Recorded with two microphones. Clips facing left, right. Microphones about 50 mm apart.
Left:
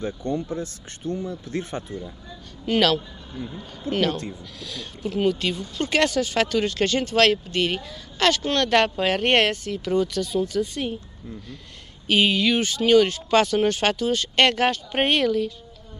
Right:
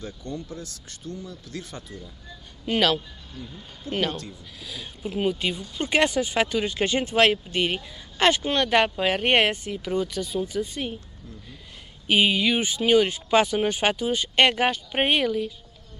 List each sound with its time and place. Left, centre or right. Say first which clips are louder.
0.0 s speech: left 8 dB; left
2.6 s speech: left 2 dB; centre
3.3 s speech: left 7 dB; left
3.9 s speech: left 4 dB; centre
12.1 s speech: left 1 dB; centre